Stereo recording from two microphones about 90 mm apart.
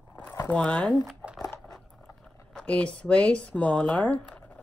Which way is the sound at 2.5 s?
15° left (ahead or behind).